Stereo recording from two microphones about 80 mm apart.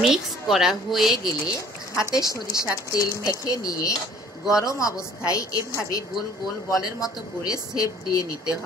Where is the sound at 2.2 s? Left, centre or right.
Left.